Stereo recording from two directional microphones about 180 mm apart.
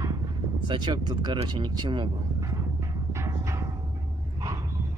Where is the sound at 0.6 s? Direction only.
25° right (ahead or behind).